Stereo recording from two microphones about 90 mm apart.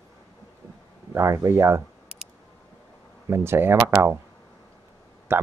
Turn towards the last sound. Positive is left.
turn(degrees=-25)  # may be behind; listen again after turning